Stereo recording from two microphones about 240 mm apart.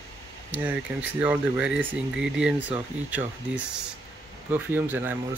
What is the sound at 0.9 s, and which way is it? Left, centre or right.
Speech, centre.